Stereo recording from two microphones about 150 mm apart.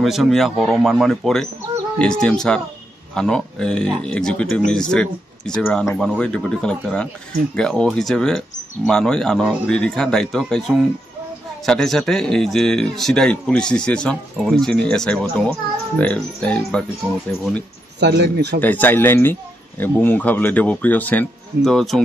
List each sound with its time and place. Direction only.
0.0 s speech: centre (ahead or behind)
18.0 s speech: 90° right
18.6 s speech: 10° left (ahead or behind)